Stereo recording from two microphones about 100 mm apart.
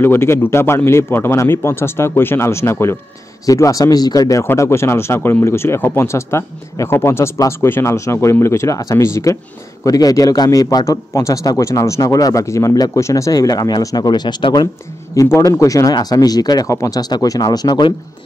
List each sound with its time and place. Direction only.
0.0 s a man's voice: 25° left (ahead or behind); by 14.7 s 45° left (ahead or behind)
15.1 s a man's voice: 30° left (ahead or behind)